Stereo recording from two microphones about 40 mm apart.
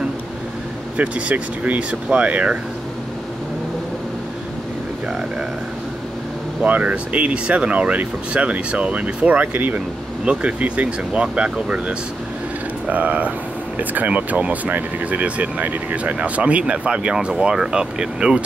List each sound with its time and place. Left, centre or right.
0.9 s speech: right
1.9 s speech: right
6.6 s speech: right
10.2 s speech: right
12.8 s speech: right